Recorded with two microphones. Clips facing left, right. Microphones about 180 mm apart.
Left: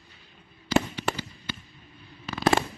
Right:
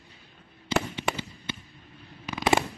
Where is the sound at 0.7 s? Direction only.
25° right (ahead or behind).